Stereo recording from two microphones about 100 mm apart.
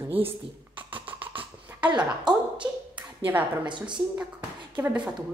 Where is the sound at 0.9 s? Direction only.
15° right (ahead or behind).